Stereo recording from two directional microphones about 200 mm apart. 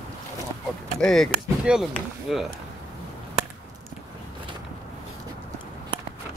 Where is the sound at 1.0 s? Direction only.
Centre (ahead or behind).